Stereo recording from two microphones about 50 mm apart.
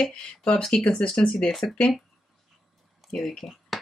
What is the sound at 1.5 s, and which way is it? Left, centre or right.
Speech, centre.